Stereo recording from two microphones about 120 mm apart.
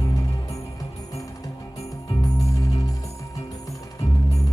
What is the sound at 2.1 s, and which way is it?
Music, 30° left (ahead or behind).